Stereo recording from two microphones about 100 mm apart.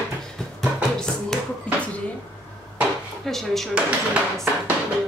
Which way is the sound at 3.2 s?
5° left (ahead or behind).